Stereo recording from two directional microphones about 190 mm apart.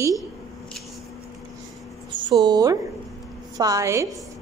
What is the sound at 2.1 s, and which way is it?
Speech, 25° right (ahead or behind).